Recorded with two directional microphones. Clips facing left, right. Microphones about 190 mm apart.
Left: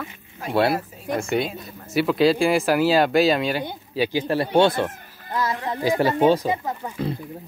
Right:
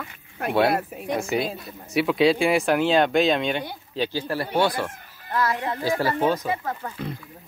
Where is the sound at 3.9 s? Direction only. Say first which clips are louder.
Left 4 dB; 15° left (ahead or behind).